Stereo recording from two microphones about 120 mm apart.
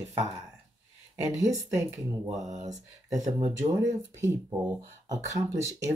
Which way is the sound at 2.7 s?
30° right (ahead or behind).